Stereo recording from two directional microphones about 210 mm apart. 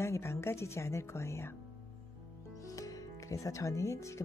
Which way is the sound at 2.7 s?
15° left (ahead or behind).